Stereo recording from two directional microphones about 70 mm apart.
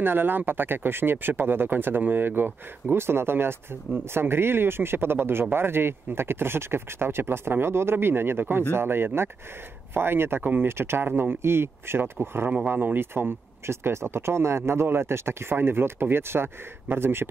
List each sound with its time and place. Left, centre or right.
0.0 s speech: right
10.7 s speech: right